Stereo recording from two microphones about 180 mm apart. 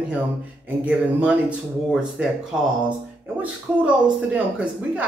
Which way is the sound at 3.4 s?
10° right (ahead or behind).